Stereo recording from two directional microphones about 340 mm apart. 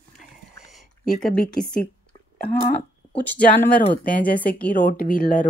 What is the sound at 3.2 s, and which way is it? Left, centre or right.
Speech, centre.